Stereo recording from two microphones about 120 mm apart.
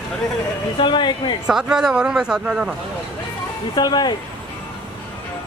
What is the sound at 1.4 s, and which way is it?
Speech, 5° right (ahead or behind).